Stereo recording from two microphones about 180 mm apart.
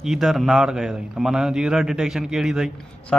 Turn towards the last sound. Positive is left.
turn(degrees=0)  # may be behind; listen again after turning